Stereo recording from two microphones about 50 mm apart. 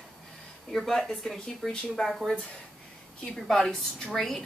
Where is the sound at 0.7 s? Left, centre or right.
Centre.